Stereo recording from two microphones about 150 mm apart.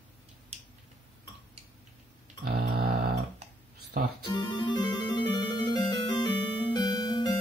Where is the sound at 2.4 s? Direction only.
90° right.